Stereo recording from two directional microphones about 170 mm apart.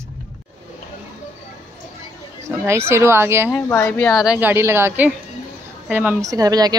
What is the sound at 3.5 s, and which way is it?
Speech, 15° left (ahead or behind).